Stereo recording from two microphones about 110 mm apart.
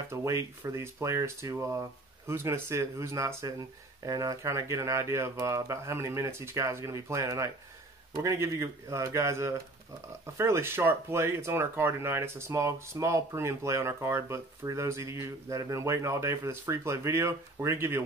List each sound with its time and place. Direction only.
0.1 s speech: 25° right (ahead or behind)